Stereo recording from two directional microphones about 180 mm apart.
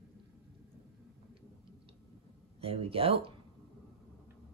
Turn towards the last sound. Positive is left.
turn(degrees=-30)  # may be behind; listen again after turning